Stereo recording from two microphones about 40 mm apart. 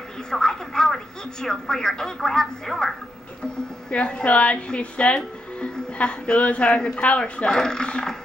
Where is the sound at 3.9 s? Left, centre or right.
Left.